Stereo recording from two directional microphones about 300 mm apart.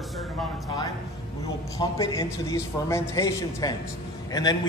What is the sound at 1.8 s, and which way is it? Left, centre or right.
A man's voice, centre.